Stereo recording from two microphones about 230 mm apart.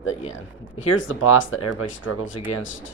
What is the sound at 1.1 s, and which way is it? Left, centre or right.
Speech, left.